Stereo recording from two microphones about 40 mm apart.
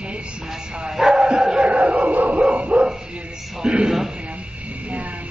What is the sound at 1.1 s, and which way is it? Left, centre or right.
Bow-wow, right.